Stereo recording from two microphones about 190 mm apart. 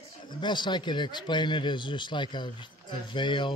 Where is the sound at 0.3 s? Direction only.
25° left (ahead or behind).